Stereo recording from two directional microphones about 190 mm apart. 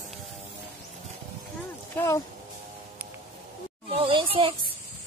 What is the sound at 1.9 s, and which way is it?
Speech, 15° left (ahead or behind).